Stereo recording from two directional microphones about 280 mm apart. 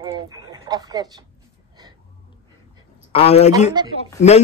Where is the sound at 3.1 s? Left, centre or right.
Left.